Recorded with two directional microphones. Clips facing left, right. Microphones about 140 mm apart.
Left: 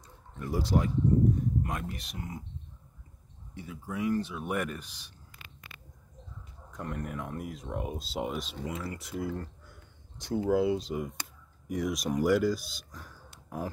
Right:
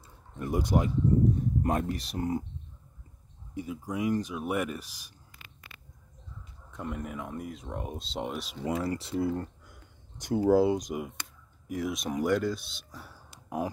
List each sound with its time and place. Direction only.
0.4 s speech: 20° right (ahead or behind)
1.6 s speech: 40° right (ahead or behind)
3.5 s speech: 15° right (ahead or behind)
6.7 s speech: 5° right (ahead or behind)
8.6 s speech: 30° right (ahead or behind)
10.1 s speech: 15° right (ahead or behind)
10.4 s speech: 35° right (ahead or behind)
10.7 s speech: 15° right (ahead or behind)